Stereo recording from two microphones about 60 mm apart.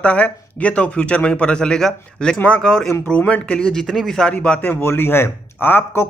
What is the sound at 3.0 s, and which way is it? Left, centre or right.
Speech, left.